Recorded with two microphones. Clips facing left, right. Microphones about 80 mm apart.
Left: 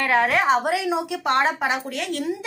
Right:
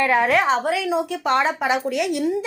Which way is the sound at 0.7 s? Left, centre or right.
Left.